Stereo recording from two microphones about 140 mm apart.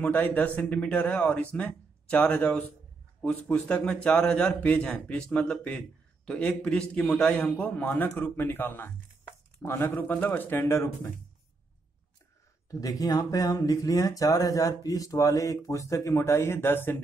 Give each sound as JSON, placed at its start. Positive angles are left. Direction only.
{"t": 0.0, "sound": "a man's voice", "side_deg": 10}
{"t": 12.8, "sound": "speech", "side_deg": 25}